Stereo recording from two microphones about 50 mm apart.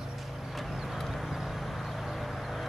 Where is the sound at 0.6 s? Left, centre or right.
Centre.